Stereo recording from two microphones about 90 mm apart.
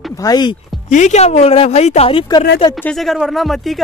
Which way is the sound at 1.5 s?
90° left.